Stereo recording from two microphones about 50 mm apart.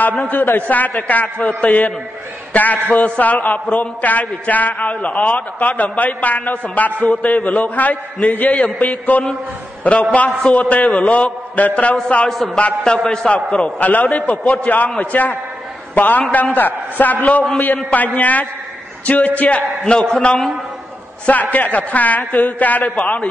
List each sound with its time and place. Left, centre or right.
0.2 s a man's voice: left
8.5 s a man's voice: left
12.8 s a man's voice: centre
13.5 s a man's voice: left
20.0 s a man's voice: centre
21.3 s a man's voice: left